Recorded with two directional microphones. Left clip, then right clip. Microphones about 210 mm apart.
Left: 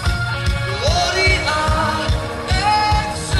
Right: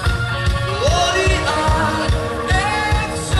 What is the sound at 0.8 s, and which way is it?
Music, 60° left (ahead or behind).